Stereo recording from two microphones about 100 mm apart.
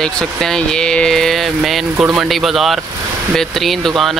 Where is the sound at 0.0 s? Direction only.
5° left (ahead or behind).